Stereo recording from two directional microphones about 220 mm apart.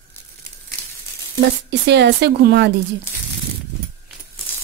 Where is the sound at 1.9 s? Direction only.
50° right (ahead or behind).